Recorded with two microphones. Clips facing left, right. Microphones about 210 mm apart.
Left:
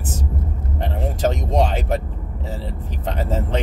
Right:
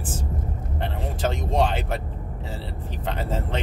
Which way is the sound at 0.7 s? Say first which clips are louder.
Left 5 dB; 40° left (ahead or behind).